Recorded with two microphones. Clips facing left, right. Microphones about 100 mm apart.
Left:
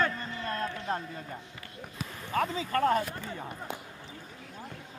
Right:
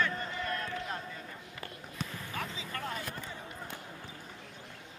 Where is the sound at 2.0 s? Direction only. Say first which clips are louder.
Even; 5° left (ahead or behind).